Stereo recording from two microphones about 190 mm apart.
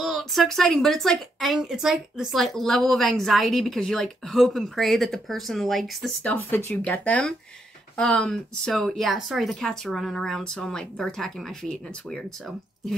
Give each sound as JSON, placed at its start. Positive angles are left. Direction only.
{"t": 0.0, "sound": "a woman's voice", "side_deg": 0}